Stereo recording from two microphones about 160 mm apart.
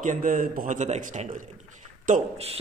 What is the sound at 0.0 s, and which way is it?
Speech, 55° right (ahead or behind).